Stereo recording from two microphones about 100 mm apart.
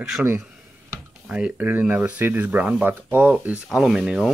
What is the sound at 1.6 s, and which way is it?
Speech, 20° right (ahead or behind).